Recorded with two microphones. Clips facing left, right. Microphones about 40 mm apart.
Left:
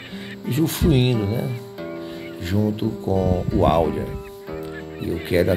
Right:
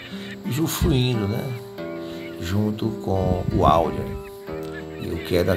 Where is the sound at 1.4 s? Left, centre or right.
Centre.